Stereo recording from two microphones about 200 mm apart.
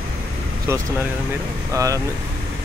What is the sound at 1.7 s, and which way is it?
Speech, 15° right (ahead or behind).